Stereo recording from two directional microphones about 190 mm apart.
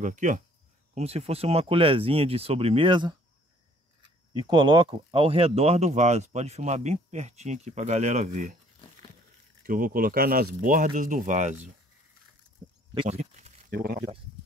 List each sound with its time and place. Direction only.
0.0 s speech: 40° right (ahead or behind); by 3.2 s 25° right (ahead or behind)
4.3 s speech: 20° right (ahead or behind); by 8.5 s 40° right (ahead or behind)
9.7 s speech: 50° right (ahead or behind)
13.0 s speech: 35° right (ahead or behind)
13.7 s speech: 55° right (ahead or behind)